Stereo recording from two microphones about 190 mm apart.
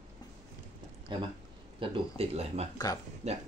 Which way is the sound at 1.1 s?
25° right (ahead or behind).